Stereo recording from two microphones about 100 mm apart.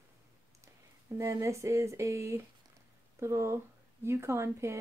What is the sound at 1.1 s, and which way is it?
A woman's voice, 30° right (ahead or behind).